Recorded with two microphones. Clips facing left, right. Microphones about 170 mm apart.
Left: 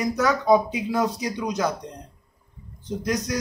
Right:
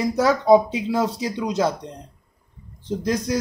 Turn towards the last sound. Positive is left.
turn(degrees=-30)  # may be behind; listen again after turning